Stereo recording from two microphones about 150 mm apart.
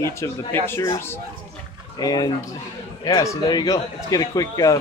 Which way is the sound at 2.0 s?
25° left (ahead or behind).